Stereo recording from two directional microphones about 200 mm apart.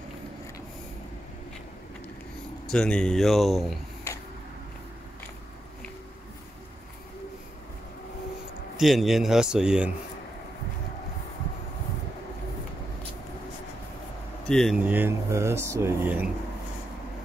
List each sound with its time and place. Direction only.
2.7 s speech: 5° left (ahead or behind)
8.7 s speech: centre (ahead or behind)
14.4 s speech: 5° left (ahead or behind)
14.8 s speech: 10° right (ahead or behind)